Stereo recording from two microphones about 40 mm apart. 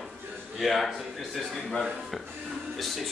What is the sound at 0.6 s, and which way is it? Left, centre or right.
A man's voice, centre.